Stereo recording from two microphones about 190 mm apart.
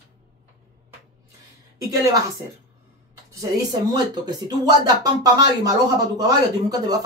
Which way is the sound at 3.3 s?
15° right (ahead or behind).